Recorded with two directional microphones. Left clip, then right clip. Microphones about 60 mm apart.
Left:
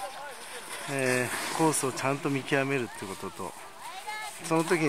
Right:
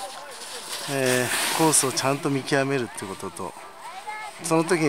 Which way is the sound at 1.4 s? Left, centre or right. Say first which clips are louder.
Right 6 dB; right.